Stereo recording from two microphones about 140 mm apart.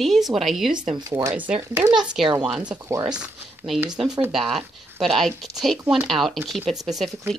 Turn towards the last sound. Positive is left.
turn(degrees=0)  # may be behind; listen again after turning